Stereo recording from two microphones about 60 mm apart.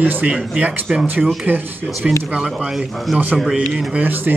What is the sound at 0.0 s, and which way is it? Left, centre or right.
Speech, right.